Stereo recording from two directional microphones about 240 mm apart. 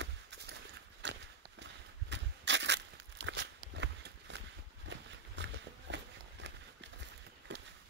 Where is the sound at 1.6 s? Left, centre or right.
Right.